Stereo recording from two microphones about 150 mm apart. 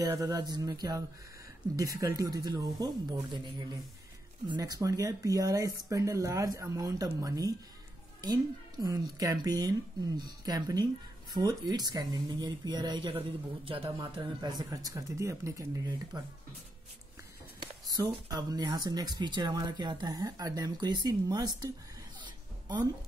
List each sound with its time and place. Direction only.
0.0 s speech: 25° right (ahead or behind)
17.6 s speech: 25° right (ahead or behind)
22.2 s music: 30° right (ahead or behind)